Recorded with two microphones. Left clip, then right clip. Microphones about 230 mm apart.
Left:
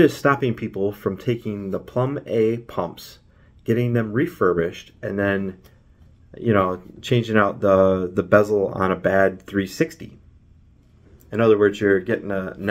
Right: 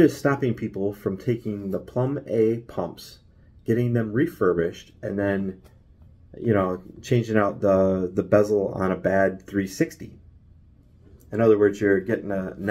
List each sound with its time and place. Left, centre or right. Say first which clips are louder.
0.2 s speech: left 4 dB; centre
11.2 s speech: left 2 dB; centre